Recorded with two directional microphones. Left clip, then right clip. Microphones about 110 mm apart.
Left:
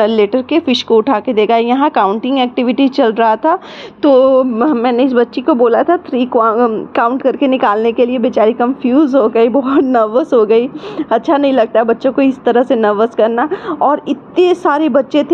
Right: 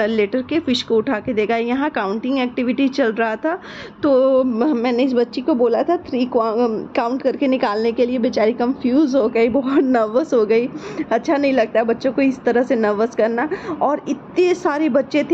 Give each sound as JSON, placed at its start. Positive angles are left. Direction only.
{"t": 0.0, "sound": "a woman's voice", "side_deg": 45}
{"t": 4.0, "sound": "a sound", "side_deg": 40}
{"t": 4.3, "sound": "a woman's voice", "side_deg": 15}
{"t": 4.8, "sound": "a woman's voice", "side_deg": 20}
{"t": 9.2, "sound": "a woman's voice", "side_deg": 30}